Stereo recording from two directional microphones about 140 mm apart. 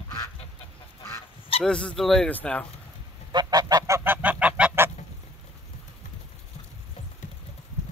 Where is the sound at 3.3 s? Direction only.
30° right (ahead or behind); by 4.9 s 10° right (ahead or behind).